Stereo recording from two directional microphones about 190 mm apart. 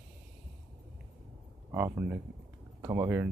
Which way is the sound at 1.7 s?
10° right (ahead or behind).